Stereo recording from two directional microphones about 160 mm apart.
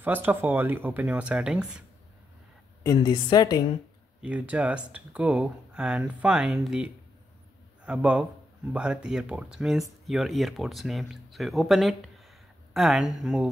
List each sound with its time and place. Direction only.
0.0 s speech: 10° right (ahead or behind)
2.8 s a woman's voice: 20° left (ahead or behind)
4.2 s speech: 10° right (ahead or behind)